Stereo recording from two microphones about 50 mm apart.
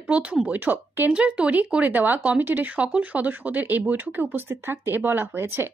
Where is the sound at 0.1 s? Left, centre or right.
Right.